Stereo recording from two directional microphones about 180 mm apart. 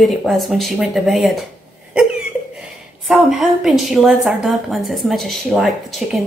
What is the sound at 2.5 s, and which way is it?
A woman's voice, centre (ahead or behind).